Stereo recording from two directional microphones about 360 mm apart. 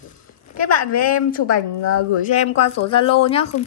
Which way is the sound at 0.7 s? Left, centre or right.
Left.